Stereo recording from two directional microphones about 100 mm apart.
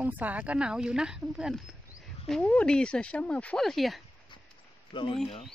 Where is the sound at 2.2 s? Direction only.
5° left (ahead or behind).